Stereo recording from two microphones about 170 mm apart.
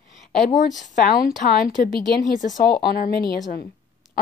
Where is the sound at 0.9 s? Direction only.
60° left (ahead or behind).